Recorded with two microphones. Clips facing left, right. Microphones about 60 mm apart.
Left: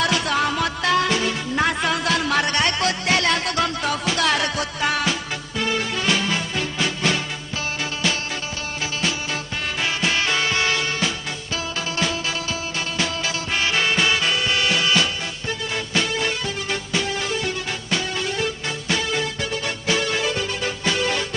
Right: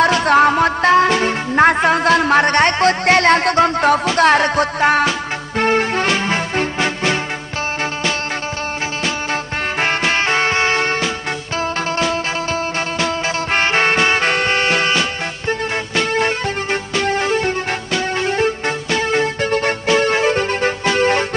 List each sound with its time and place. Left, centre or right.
0.0 s music: right
9.0 s music: right
13.0 s music: right